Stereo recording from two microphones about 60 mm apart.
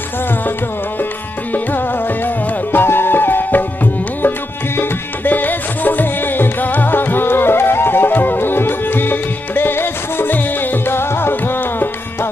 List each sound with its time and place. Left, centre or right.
2.2 s music: left